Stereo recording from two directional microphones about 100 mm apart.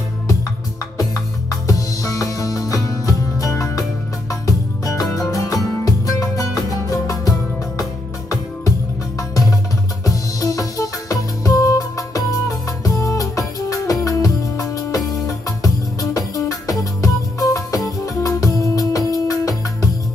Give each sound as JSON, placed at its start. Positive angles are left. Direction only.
{"t": 1.5, "sound": "music", "side_deg": 35}
{"t": 10.0, "sound": "music", "side_deg": 35}